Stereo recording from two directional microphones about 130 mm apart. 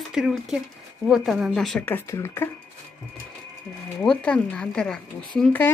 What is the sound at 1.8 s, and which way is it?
Speech, 15° left (ahead or behind).